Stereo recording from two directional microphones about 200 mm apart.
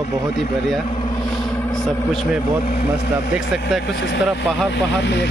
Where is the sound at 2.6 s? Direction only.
45° left (ahead or behind).